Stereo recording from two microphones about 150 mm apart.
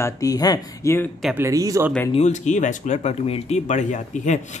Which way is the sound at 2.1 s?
50° left (ahead or behind).